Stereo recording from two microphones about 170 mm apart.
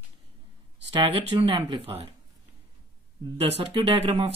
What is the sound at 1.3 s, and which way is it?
Speech, 30° right (ahead or behind).